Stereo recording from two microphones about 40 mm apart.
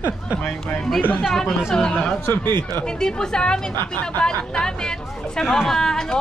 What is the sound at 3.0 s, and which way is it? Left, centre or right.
A woman's voice, centre.